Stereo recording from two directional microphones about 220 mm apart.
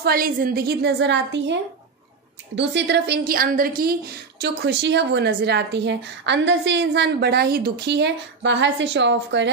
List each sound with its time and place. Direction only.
0.0 s a woman's voice: 40° right (ahead or behind)